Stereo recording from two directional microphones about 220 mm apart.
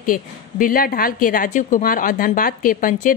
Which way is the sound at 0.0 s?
40° left (ahead or behind).